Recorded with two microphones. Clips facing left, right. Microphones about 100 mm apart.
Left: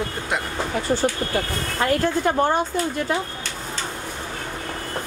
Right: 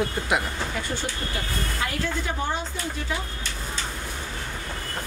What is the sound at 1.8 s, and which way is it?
Speech, 50° left (ahead or behind).